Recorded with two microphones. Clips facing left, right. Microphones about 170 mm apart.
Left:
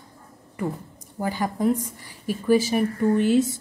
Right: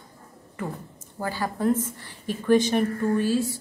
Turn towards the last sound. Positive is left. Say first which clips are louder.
# left 4 dB
turn(degrees=20)  # may be behind; listen again after turning